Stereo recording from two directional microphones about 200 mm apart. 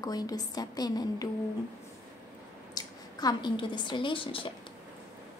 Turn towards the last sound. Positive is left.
turn(degrees=25)  # may be behind; listen again after turning